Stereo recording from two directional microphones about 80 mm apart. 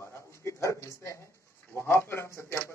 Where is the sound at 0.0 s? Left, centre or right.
Left.